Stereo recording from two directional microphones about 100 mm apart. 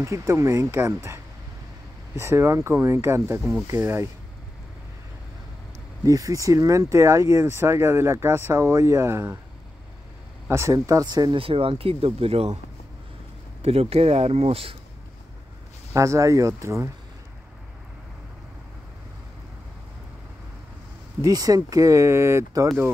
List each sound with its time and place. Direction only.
0.0 s speech: 30° right (ahead or behind)
6.0 s speech: 35° right (ahead or behind)
10.5 s speech: 30° right (ahead or behind)
11.3 s speech: 65° right (ahead or behind); by 12.5 s 85° right
13.6 s speech: 85° right
15.9 s speech: 30° right (ahead or behind)
21.2 s speech: 35° right (ahead or behind)